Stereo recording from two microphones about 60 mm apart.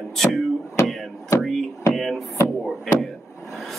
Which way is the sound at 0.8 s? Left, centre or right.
Left.